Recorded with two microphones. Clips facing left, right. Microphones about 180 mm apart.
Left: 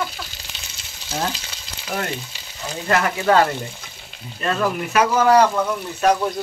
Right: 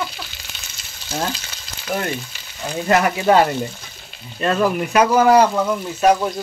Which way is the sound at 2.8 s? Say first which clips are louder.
Right 3 dB; 20° right (ahead or behind).